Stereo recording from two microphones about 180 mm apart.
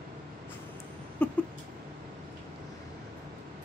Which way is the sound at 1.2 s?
5° left (ahead or behind).